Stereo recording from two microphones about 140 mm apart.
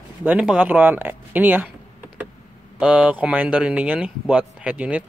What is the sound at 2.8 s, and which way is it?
Speech, 10° right (ahead or behind).